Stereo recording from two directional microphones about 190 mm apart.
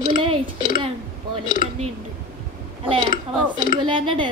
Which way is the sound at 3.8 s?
25° right (ahead or behind).